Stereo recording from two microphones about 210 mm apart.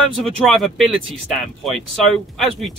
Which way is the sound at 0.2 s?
Centre (ahead or behind).